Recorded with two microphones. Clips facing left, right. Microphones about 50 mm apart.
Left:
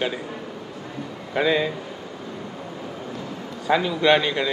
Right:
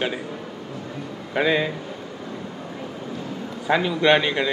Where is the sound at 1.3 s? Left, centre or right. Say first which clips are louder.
Even; centre.